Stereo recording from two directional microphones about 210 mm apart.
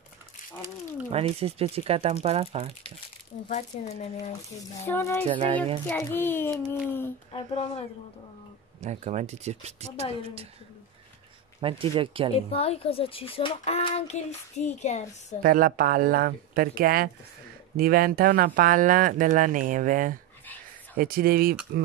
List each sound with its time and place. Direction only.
1.1 s speech: 30° right (ahead or behind)
3.7 s speech: 35° left (ahead or behind)
4.8 s a child's voice: 10° left (ahead or behind)
5.2 s speech: 25° right (ahead or behind)
5.9 s a child's voice: 10° left (ahead or behind)
7.3 s a child's voice: 30° left (ahead or behind)
8.8 s speech: 30° right (ahead or behind)
11.6 s speech: 25° right (ahead or behind)
12.3 s a child's voice: 30° left (ahead or behind)
15.4 s speech: 40° right (ahead or behind)